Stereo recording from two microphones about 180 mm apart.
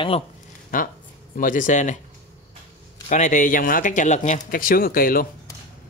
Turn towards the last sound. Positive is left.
turn(degrees=55)  # may be behind; listen again after turning